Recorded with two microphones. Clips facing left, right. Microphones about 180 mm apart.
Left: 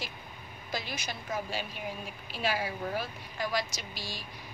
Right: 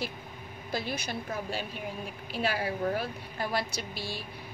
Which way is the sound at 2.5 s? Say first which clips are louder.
Right 2 dB; 60° right (ahead or behind).